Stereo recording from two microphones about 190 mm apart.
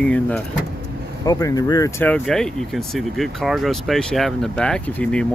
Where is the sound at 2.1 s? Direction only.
5° left (ahead or behind).